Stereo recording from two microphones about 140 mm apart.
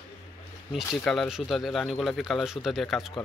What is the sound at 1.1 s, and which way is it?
Speech, centre (ahead or behind).